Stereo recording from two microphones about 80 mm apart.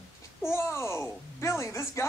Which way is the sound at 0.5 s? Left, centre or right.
Left.